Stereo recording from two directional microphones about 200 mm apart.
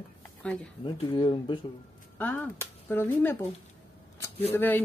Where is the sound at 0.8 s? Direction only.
25° left (ahead or behind).